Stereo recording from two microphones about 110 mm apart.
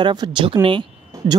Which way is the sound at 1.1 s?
30° right (ahead or behind).